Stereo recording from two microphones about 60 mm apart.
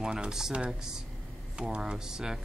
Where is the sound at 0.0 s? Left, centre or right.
Centre.